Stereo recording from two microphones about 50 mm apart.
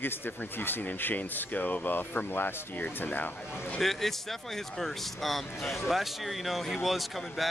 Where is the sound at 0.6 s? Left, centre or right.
Left.